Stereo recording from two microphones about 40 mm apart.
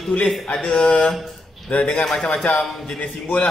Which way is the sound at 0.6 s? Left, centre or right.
Left.